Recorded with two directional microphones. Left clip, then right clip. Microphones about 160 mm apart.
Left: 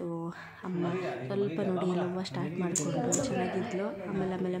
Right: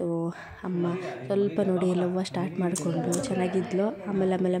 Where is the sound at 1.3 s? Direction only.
30° right (ahead or behind).